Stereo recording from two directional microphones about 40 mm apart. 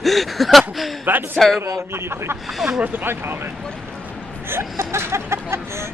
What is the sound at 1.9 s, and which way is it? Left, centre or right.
Speech, right.